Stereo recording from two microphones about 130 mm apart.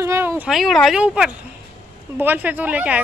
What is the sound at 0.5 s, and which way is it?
A man's voice, centre (ahead or behind).